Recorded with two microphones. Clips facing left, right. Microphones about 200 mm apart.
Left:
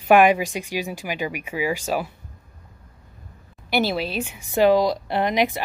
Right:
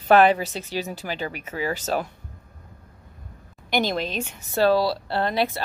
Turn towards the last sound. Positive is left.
turn(degrees=15)  # may be behind; listen again after turning